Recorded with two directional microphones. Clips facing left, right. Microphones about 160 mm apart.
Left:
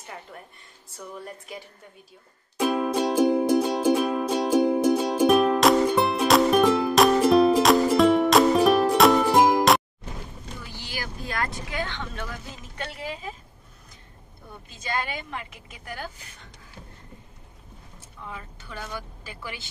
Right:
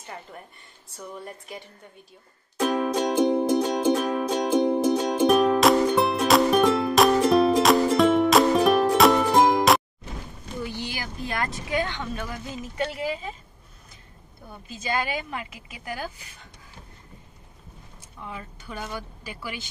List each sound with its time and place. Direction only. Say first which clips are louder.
0.9 s a woman's voice: even; centre (ahead or behind)
2.6 s music: even; 5° left (ahead or behind)
10.6 s a woman's voice: right 6 dB; 20° right (ahead or behind)
14.7 s a woman's voice: right 3 dB; 5° right (ahead or behind)
18.2 s speech: right 2 dB; 15° right (ahead or behind)